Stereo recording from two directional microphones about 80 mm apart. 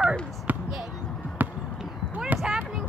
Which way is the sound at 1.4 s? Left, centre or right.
Right.